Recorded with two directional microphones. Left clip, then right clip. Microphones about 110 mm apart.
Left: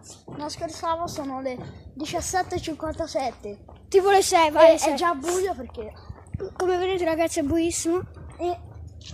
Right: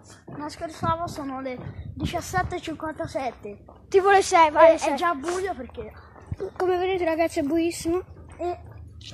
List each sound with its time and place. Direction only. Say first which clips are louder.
0.4 s a woman's voice: left 1 dB; 5° left (ahead or behind); by 3.0 s 25° left (ahead or behind)
3.0 s a woman's voice: left 3 dB; 15° left (ahead or behind)
4.4 s a woman's voice: even; 25° left (ahead or behind)
6.7 s speech: even; 5° left (ahead or behind)